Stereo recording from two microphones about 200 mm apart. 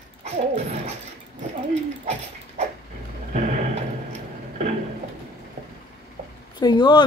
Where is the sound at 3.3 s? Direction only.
35° right (ahead or behind).